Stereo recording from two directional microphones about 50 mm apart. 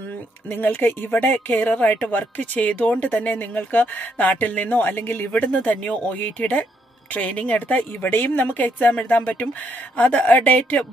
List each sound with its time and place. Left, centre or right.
0.8 s speech: left
5.3 s speech: left
8.1 s speech: left